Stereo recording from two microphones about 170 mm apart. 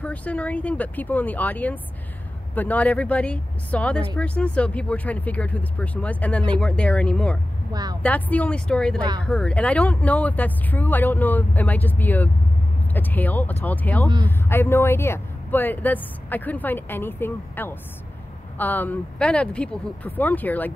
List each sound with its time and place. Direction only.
0.0 s speech: 10° left (ahead or behind)
7.7 s a woman's voice: 20° right (ahead or behind)
8.0 s speech: 10° left (ahead or behind)